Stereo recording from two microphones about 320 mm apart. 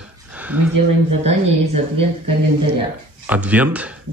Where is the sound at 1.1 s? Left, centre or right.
Centre.